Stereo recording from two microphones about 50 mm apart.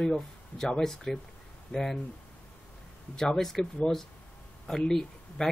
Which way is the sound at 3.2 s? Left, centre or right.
Centre.